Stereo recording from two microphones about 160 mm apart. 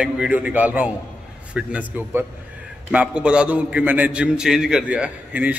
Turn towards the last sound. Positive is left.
turn(degrees=-10)  # may be behind; listen again after turning